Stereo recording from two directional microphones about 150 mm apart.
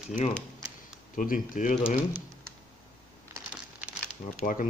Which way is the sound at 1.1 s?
65° left (ahead or behind).